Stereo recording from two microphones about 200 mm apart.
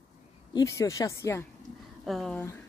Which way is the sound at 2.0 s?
Centre (ahead or behind).